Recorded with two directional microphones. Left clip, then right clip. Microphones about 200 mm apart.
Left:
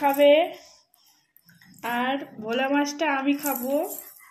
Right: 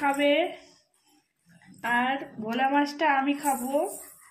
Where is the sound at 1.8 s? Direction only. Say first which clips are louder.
Right 1 dB; 15° left (ahead or behind).